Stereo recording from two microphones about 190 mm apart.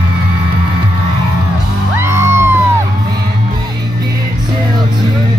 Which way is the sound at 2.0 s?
15° right (ahead or behind).